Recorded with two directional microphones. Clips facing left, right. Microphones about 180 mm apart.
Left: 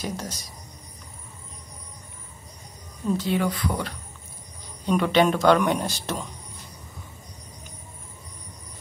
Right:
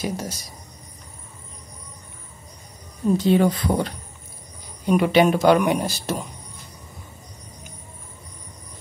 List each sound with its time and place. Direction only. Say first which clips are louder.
0.0 s speech: right 4 dB; 10° right (ahead or behind)
3.1 s speech: right 6 dB; 25° right (ahead or behind)
4.8 s speech: right 3 dB; 10° right (ahead or behind)